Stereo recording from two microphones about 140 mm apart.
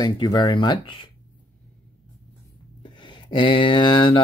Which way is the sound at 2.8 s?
35° left (ahead or behind).